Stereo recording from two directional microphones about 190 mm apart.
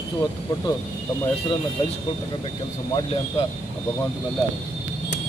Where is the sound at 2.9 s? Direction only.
30° left (ahead or behind).